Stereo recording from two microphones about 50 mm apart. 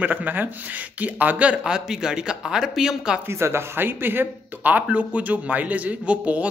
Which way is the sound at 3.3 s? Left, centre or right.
Right.